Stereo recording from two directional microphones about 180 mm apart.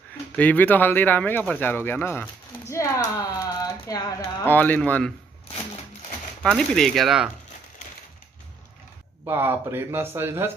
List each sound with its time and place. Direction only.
0.4 s speech: 10° left (ahead or behind)
4.5 s speech: 10° left (ahead or behind)
6.4 s speech: centre (ahead or behind)
9.2 s speech: 10° right (ahead or behind)